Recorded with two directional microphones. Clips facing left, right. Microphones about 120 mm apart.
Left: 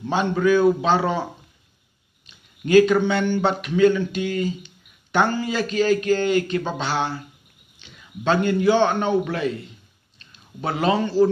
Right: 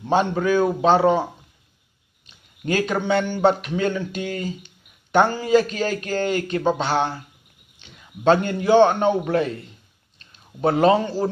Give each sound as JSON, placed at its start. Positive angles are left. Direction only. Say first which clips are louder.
{"t": 0.0, "sound": "a man's voice", "louder": "even", "side_deg": -40}
{"t": 2.6, "sound": "a man's voice", "louder": "left 7 dB", "side_deg": -40}
{"t": 8.2, "sound": "a man's voice", "louder": "right 2 dB", "side_deg": -40}